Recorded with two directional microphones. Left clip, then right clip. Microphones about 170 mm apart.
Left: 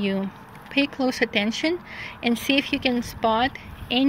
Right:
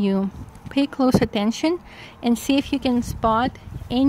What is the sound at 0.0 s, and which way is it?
Speech, 50° right (ahead or behind).